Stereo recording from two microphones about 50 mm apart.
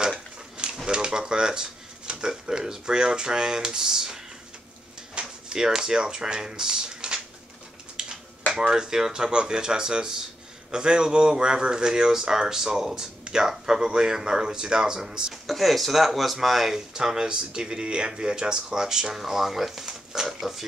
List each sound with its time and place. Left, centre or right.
0.8 s speech: centre
5.2 s a sound: right
5.5 s speech: centre
8.0 s a sound: centre
8.5 s speech: centre
15.4 s speech: centre